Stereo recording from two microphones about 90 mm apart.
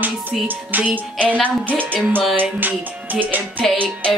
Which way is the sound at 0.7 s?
20° right (ahead or behind).